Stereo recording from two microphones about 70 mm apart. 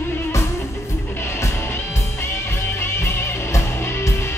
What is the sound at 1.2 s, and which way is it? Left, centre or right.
Music, left.